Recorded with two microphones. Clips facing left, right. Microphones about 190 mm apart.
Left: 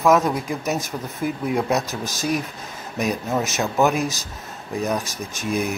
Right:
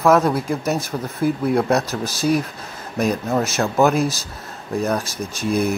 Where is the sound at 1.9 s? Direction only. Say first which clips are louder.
Right 5 dB; 35° right (ahead or behind).